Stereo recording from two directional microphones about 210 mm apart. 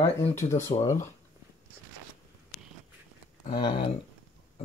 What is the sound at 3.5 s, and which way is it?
Speech, 25° left (ahead or behind).